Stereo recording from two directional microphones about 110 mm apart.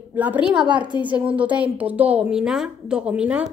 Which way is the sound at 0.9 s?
40° left (ahead or behind).